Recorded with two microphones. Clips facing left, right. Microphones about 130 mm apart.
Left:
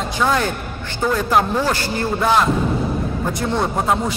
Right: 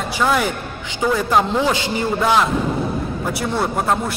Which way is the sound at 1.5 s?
15° right (ahead or behind).